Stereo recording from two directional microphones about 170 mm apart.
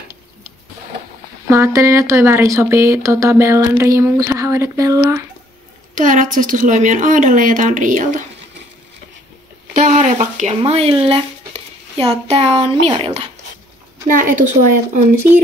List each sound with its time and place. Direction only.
1.5 s speech: 15° right (ahead or behind)
5.9 s a woman's voice: 50° right (ahead or behind)
9.8 s speech: 50° right (ahead or behind)
14.0 s a woman's voice: 50° right (ahead or behind)